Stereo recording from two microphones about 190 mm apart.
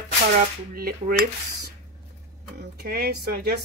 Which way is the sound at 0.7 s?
50° right (ahead or behind).